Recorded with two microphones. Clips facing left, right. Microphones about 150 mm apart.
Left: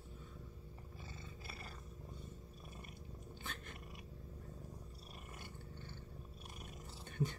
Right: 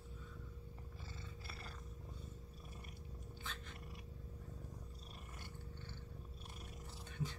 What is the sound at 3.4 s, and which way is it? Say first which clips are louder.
Cat: left 2 dB; 55° left (ahead or behind).